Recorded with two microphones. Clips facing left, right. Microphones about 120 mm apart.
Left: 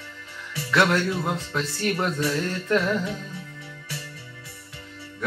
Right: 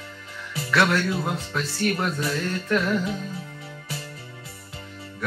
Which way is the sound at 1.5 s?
25° left (ahead or behind).